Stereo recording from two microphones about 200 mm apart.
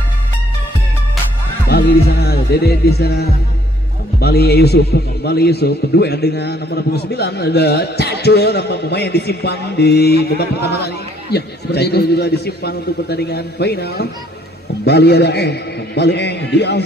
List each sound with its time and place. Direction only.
1.7 s a man's voice: 55° left (ahead or behind)